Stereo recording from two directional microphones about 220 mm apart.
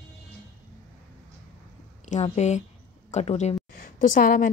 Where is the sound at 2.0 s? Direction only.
30° left (ahead or behind).